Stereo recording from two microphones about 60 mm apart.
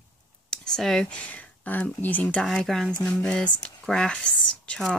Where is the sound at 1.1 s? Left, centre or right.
Left.